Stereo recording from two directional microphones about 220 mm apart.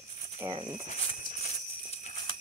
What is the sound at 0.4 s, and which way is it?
Speech, 20° right (ahead or behind).